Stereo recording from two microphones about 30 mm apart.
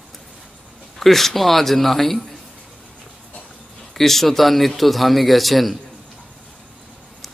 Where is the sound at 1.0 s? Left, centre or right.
Centre.